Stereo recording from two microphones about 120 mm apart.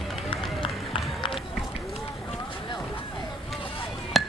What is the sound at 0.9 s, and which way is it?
Run, 45° left (ahead or behind).